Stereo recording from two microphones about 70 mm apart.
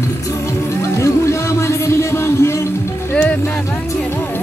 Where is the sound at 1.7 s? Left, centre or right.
Left.